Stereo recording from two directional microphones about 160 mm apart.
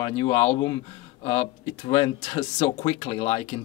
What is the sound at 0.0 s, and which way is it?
Speech, 35° left (ahead or behind).